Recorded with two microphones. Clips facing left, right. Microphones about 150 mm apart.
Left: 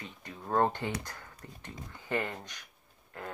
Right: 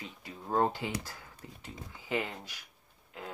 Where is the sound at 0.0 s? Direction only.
5° right (ahead or behind).